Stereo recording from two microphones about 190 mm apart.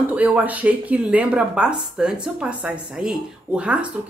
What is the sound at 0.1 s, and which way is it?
Speech, 5° right (ahead or behind).